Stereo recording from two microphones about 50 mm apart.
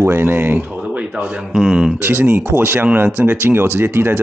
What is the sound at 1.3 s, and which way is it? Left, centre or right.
Speech, centre.